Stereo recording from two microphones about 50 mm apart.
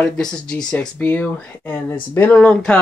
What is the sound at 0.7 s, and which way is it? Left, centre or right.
Speech, left.